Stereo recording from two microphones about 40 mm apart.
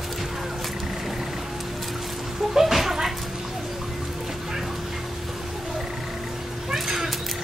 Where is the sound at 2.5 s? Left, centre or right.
Centre.